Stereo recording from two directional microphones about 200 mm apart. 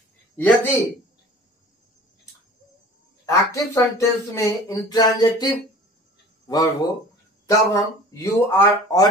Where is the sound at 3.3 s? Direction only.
15° left (ahead or behind).